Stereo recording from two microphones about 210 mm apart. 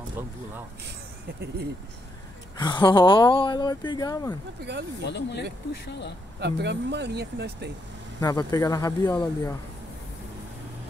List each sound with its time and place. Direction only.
2.5 s speech: 20° left (ahead or behind)
4.7 s speech: 55° right (ahead or behind)
5.0 s speech: 55° left (ahead or behind)
6.4 s speech: 55° right (ahead or behind)
8.2 s speech: 15° left (ahead or behind)